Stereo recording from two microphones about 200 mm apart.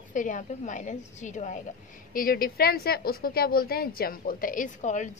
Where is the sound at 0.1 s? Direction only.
40° left (ahead or behind).